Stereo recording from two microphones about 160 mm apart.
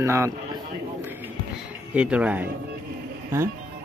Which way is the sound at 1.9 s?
5° right (ahead or behind).